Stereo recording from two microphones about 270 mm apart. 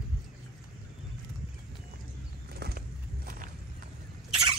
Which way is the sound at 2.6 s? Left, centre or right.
Right.